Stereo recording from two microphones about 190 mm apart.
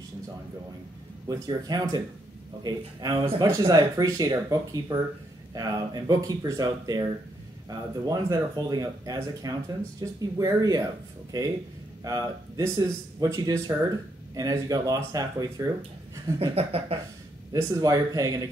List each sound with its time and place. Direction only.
1.3 s speech: 20° right (ahead or behind)
16.3 s a sound: 30° right (ahead or behind)
17.5 s speech: 15° right (ahead or behind)